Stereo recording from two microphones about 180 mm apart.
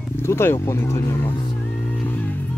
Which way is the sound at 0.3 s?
15° left (ahead or behind).